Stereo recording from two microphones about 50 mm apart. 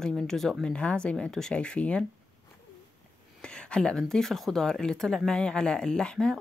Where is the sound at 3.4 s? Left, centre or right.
Centre.